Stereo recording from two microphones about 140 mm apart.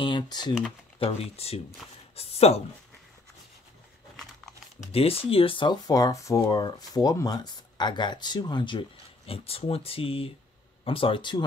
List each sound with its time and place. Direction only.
0.0 s speech: 30° left (ahead or behind)
0.9 s speech: 45° left (ahead or behind)
4.9 s speech: 45° left (ahead or behind)